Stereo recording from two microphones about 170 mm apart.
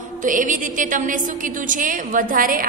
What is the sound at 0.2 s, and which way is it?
A woman's voice, 50° right (ahead or behind).